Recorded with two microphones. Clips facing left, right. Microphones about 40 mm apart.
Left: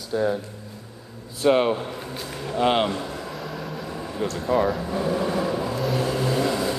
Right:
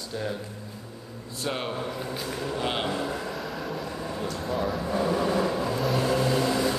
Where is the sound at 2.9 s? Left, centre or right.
Centre.